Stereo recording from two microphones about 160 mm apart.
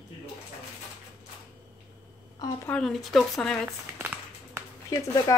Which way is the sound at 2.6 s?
5° left (ahead or behind).